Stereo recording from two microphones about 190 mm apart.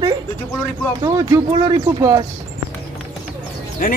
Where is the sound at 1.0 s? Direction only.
20° right (ahead or behind).